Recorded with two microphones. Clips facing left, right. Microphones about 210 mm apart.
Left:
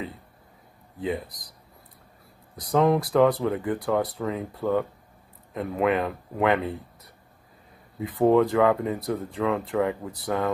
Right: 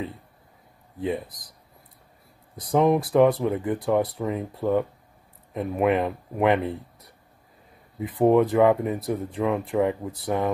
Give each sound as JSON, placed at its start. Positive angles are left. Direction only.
{"t": 2.7, "sound": "speech", "side_deg": -15}
{"t": 8.0, "sound": "speech", "side_deg": -20}